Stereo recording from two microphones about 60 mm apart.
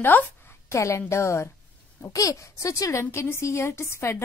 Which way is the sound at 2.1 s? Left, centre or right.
Left.